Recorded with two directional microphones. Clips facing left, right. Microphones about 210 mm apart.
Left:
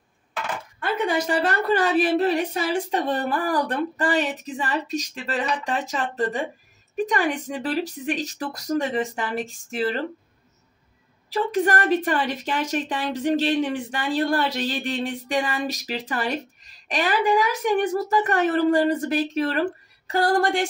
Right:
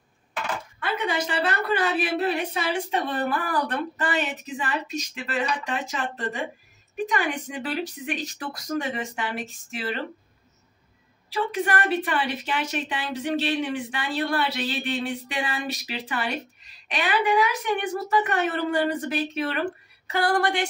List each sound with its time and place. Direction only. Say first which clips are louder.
0.7 s a woman's voice: left 4 dB; 45° left (ahead or behind)
11.5 s a woman's voice: left 5 dB; 40° left (ahead or behind)